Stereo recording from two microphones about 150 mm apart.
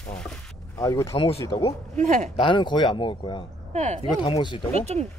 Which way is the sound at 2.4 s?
30° left (ahead or behind).